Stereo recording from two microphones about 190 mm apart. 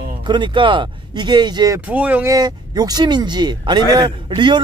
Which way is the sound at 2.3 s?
20° right (ahead or behind).